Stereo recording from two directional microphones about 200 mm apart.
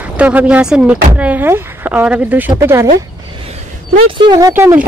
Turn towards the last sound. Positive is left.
turn(degrees=-10)  # may be behind; listen again after turning